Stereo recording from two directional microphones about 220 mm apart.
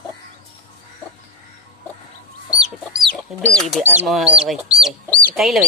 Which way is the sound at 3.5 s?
Centre (ahead or behind).